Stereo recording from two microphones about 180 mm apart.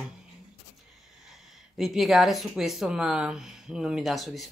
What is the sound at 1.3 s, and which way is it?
Speech, centre (ahead or behind).